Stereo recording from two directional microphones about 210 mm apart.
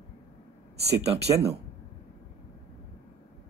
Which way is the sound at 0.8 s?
30° right (ahead or behind).